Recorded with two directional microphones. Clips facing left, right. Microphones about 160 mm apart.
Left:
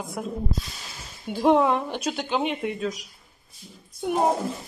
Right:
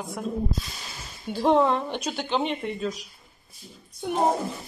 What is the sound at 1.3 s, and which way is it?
Speech, 10° left (ahead or behind).